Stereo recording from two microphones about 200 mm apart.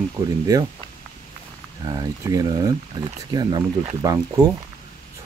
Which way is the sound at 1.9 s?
20° right (ahead or behind).